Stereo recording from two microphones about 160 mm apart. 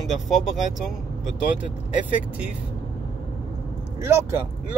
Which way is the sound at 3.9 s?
15° right (ahead or behind).